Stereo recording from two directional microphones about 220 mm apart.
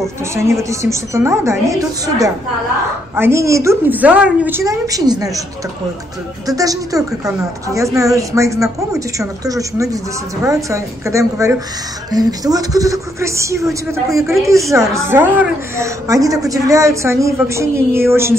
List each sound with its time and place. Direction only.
0.2 s a woman's voice: 10° right (ahead or behind)
6.4 s a woman's voice: 15° right (ahead or behind)
14.7 s a woman's voice: 15° right (ahead or behind)